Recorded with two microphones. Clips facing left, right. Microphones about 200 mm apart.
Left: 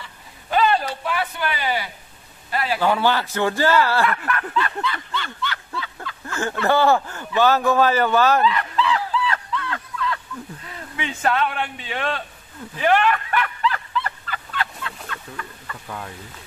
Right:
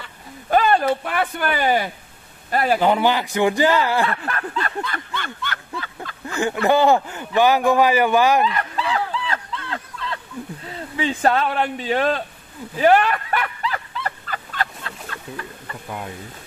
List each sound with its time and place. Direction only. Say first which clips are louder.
0.0 s a man's voice: right 4 dB; 50° right (ahead or behind)
2.8 s speech: right 2 dB; 20° right (ahead or behind)
4.0 s snicker: left 1 dB; 30° right (ahead or behind); by 5.9 s 50° right (ahead or behind)
6.2 s speech: right 3 dB; 15° right (ahead or behind)
8.5 s a sound: left 3 dB; 45° right (ahead or behind)